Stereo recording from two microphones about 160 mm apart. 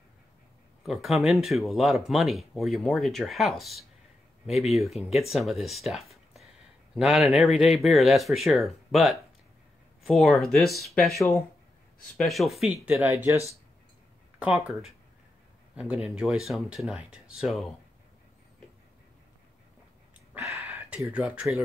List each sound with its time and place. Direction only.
0.8 s speech: centre (ahead or behind)
13.1 s speech: 20° right (ahead or behind)
14.4 s speech: 5° right (ahead or behind)
20.3 s a sound: 10° right (ahead or behind)